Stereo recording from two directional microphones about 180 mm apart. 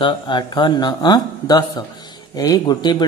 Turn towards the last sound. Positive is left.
turn(degrees=25)  # may be behind; listen again after turning